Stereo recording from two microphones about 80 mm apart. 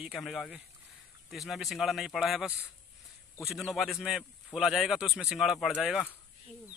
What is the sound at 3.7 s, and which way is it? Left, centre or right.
Speech, centre.